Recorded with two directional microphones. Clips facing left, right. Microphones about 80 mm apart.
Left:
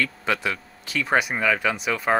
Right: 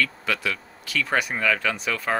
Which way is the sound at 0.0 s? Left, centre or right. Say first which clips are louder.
Left 1 dB; left.